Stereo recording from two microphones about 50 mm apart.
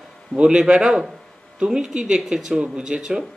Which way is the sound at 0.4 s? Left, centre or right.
Centre.